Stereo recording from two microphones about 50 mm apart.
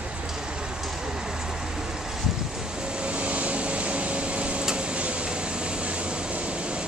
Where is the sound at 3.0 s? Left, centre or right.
Right.